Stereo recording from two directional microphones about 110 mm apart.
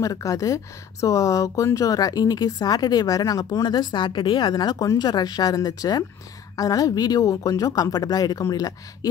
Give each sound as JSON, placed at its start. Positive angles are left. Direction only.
{"t": 0.0, "sound": "speech", "side_deg": 30}